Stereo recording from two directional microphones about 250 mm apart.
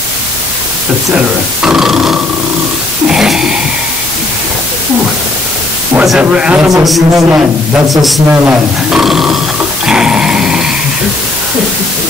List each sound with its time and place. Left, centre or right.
1.1 s speech: centre
3.1 s a sound: centre
5.9 s speech: centre
9.8 s dog: centre